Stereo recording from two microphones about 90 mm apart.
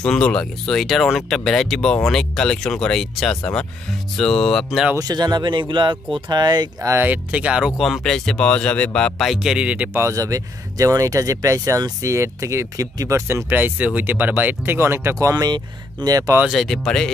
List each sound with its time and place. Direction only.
0.0 s speech: 10° left (ahead or behind)
4.9 s speech: 50° right (ahead or behind)
7.0 s speech: 15° right (ahead or behind)
7.8 s speech: 5° left (ahead or behind)
9.2 s speech: 5° right (ahead or behind)
9.9 s speech: 35° right (ahead or behind)
13.5 s speech: 20° right (ahead or behind)
15.3 s speech: 50° right (ahead or behind)
16.5 s speech: centre (ahead or behind)